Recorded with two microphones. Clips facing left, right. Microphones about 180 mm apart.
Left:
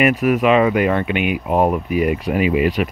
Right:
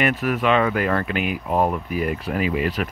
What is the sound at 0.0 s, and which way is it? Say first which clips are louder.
Speech: left 6 dB; 15° left (ahead or behind).